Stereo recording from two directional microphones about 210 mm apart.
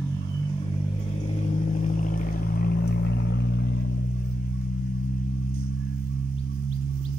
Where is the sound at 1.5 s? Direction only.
35° left (ahead or behind); by 3.7 s 55° left (ahead or behind).